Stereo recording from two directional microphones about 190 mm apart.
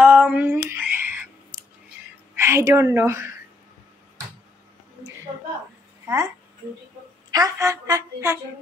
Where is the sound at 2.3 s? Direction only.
15° right (ahead or behind).